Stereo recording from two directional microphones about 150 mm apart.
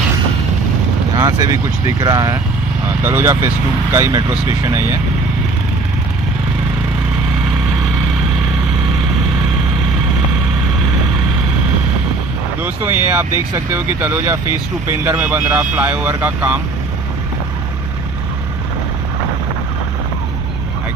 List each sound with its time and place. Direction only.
1.1 s speech: 25° right (ahead or behind)
13.1 s speech: 15° right (ahead or behind)